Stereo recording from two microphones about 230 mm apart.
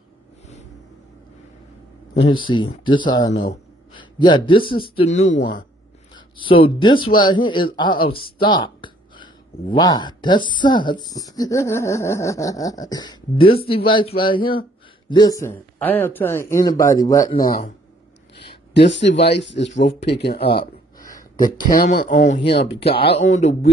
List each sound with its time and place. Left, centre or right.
2.4 s a man's voice: centre
17.4 s speech: left
18.7 s speech: left
20.3 s speech: left
21.7 s speech: left
22.8 s speech: left